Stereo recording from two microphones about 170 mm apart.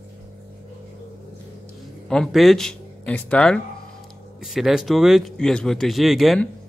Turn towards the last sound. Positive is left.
turn(degrees=0)  # may be behind; listen again after turning